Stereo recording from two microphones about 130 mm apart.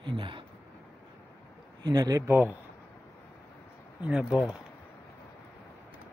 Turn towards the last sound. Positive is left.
turn(degrees=-5)  # may be behind; listen again after turning